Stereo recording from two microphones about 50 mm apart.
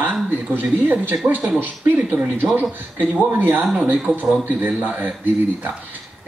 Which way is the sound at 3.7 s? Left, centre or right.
Right.